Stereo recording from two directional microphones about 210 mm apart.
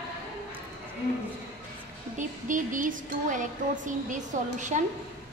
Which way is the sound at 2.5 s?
40° right (ahead or behind).